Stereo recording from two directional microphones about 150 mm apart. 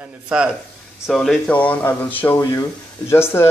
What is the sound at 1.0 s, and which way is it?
Speech, centre (ahead or behind).